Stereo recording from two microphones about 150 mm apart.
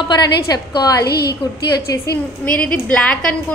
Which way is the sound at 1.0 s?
90° left.